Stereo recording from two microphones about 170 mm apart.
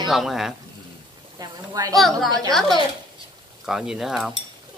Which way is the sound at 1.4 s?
25° right (ahead or behind).